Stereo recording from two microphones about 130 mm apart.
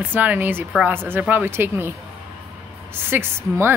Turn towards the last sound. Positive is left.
turn(degrees=-20)  # may be behind; listen again after turning